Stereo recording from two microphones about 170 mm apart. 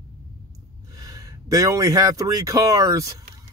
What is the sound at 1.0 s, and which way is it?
A man's voice, 20° right (ahead or behind).